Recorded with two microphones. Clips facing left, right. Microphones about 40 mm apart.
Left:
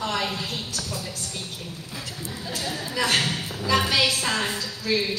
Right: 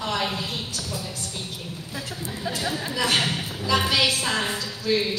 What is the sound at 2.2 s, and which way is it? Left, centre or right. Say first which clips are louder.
Speech: right 3 dB; right.